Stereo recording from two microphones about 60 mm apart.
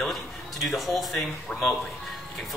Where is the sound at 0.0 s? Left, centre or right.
Centre.